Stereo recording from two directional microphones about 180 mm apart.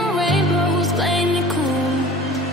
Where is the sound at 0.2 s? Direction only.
Centre (ahead or behind).